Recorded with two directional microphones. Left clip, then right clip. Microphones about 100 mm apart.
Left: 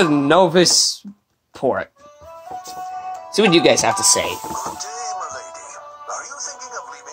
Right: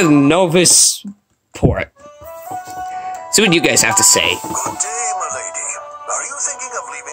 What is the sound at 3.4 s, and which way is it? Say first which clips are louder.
Speech: left 1 dB; 90° right.